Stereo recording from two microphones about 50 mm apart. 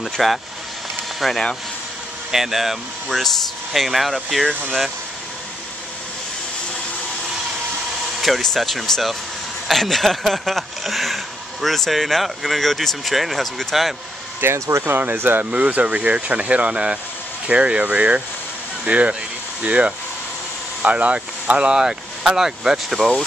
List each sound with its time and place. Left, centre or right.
0.0 s speech: centre
8.4 s speech: centre
14.4 s speech: right
14.9 s speech: right
15.5 s speech: right; by 23.1 s centre